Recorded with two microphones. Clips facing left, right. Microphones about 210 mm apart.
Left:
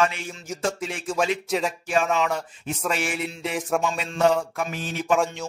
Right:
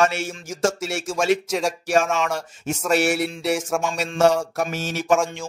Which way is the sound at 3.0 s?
75° right (ahead or behind).